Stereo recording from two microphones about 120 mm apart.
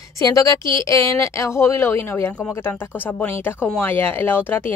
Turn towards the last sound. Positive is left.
turn(degrees=15)  # may be behind; listen again after turning